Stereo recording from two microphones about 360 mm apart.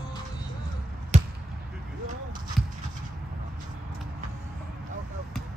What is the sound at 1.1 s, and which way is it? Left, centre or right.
Basketball bounce, centre.